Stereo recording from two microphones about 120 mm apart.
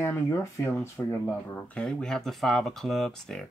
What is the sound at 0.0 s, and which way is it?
Speech, 20° left (ahead or behind).